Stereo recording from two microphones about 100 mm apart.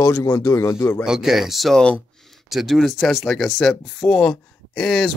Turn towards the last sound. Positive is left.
turn(degrees=0)  # may be behind; listen again after turning